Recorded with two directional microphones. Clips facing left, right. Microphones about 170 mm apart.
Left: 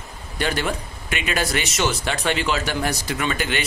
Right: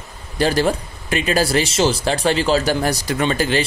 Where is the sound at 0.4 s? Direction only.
35° right (ahead or behind).